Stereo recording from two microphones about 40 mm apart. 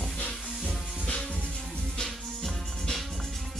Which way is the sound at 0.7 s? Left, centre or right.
Left.